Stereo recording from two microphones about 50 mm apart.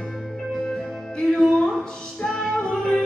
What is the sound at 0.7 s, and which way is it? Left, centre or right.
Music, centre.